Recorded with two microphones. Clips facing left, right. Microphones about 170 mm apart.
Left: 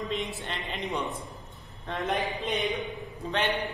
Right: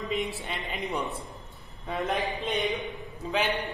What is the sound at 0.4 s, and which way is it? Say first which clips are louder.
Speech: right 1 dB; centre (ahead or behind).